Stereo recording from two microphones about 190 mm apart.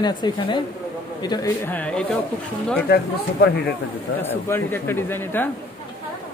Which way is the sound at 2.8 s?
55° left (ahead or behind).